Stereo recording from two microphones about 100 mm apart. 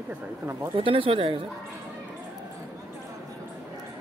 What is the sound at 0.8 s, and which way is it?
Speech, 65° right (ahead or behind).